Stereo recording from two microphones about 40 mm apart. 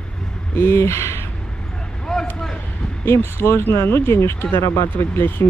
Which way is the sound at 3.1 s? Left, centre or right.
Left.